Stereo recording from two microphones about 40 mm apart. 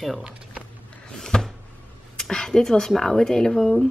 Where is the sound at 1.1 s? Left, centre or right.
Centre.